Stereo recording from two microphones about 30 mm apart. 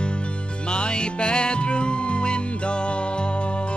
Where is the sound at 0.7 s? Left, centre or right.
Left.